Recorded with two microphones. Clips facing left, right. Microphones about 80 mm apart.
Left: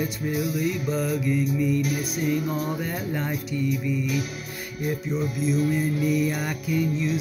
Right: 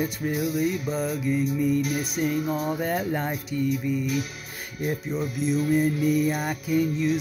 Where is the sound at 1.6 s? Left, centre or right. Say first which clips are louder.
Even; right.